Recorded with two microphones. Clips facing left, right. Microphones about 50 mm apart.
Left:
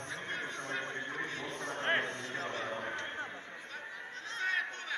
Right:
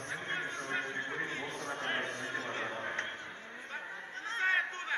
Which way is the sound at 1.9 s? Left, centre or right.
Centre.